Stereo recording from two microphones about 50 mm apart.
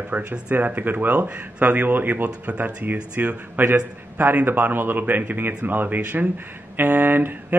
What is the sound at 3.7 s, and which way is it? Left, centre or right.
A man's voice, right.